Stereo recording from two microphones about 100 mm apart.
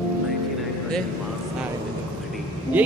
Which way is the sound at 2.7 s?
15° right (ahead or behind).